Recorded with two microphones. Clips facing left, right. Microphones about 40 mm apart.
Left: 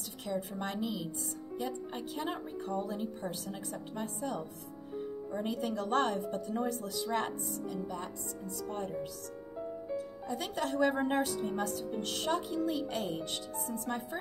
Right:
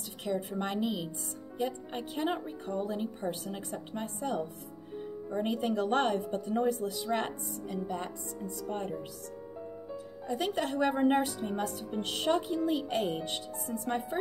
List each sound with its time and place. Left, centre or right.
0.2 s a woman's voice: centre
5.4 s a woman's voice: right
10.2 s a woman's voice: centre